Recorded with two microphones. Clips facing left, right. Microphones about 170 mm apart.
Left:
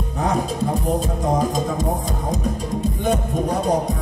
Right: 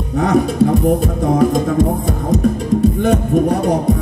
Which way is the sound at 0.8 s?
60° right (ahead or behind).